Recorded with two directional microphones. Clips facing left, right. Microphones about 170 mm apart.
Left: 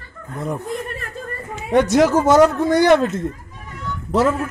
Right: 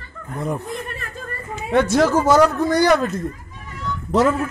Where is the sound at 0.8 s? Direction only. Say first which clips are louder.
Left 2 dB; 40° left (ahead or behind).